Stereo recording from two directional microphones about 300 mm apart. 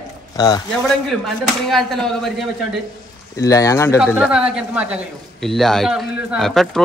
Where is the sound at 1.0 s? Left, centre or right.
Centre.